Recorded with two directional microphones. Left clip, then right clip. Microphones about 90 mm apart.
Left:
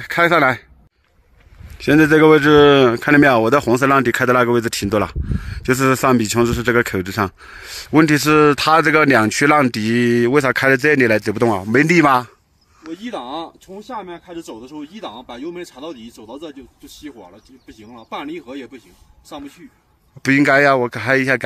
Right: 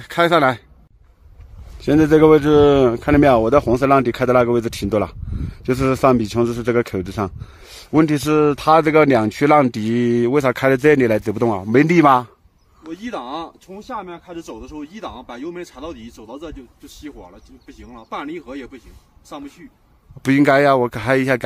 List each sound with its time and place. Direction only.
0.0 s speech: centre (ahead or behind)
1.9 s speech: 10° right (ahead or behind)
13.0 s speech: 30° left (ahead or behind)
20.2 s speech: 35° right (ahead or behind)